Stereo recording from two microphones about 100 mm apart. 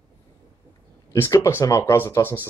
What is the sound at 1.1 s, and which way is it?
Speech, 25° left (ahead or behind).